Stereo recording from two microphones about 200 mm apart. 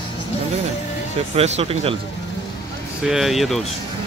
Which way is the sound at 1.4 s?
30° right (ahead or behind).